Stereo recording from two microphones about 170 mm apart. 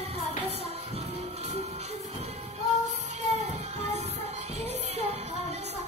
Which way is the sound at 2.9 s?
45° right (ahead or behind).